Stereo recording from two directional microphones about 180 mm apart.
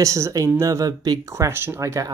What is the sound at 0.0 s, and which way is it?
Speech, 20° right (ahead or behind).